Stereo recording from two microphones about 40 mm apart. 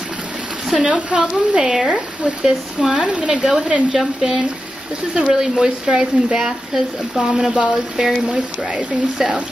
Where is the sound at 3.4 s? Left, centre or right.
Centre.